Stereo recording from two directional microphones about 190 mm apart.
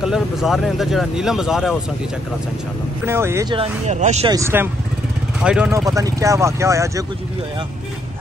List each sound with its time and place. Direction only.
0.0 s speech: centre (ahead or behind)
3.1 s speech: 15° right (ahead or behind)
3.5 s speech: 35° right (ahead or behind)
4.3 s speech: 15° right (ahead or behind)
5.7 s speech: 15° right (ahead or behind)